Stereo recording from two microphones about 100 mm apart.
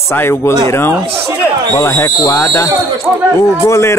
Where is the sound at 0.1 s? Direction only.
25° left (ahead or behind).